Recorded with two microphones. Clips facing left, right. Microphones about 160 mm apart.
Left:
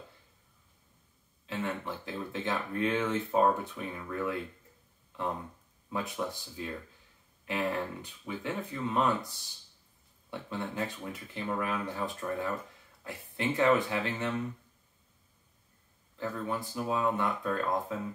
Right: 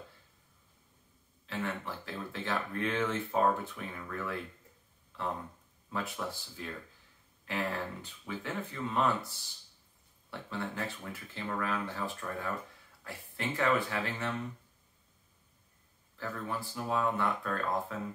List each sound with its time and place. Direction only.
1.4 s speech: 20° left (ahead or behind)
5.9 s speech: 20° left (ahead or behind)
16.2 s speech: 20° left (ahead or behind)